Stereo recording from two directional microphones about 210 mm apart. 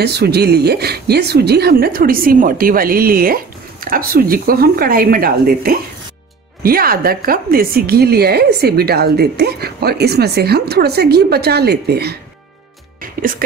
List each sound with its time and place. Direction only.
0.0 s a woman's voice: 50° right (ahead or behind)
13.0 s music: 40° right (ahead or behind)